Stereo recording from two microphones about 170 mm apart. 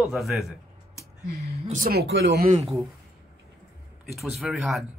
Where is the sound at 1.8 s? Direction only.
70° right (ahead or behind).